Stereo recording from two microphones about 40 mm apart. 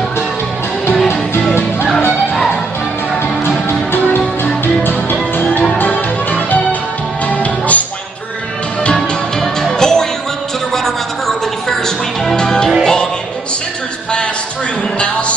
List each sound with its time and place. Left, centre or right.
5.8 s music: left
9.4 s music: centre
12.4 s music: centre
15.0 s a sound: left